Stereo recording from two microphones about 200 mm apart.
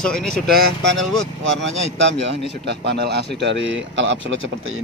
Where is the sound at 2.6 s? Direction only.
55° right (ahead or behind).